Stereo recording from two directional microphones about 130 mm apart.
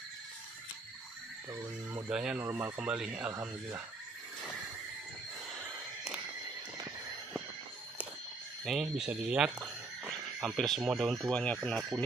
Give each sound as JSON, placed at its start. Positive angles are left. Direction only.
{"t": 1.5, "sound": "speech", "side_deg": -25}
{"t": 2.0, "sound": "speech", "side_deg": -5}
{"t": 2.4, "sound": "speech", "side_deg": -20}
{"t": 8.6, "sound": "speech", "side_deg": 0}
{"t": 10.4, "sound": "speech", "side_deg": 0}